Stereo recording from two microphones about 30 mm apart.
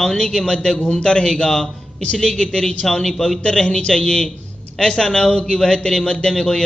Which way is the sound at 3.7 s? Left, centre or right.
Left.